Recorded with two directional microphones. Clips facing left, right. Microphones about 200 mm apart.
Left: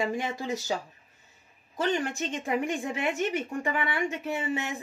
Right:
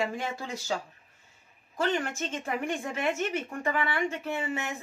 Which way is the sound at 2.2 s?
15° left (ahead or behind).